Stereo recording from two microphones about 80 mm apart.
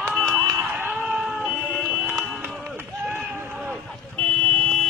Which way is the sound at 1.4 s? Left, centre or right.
Centre.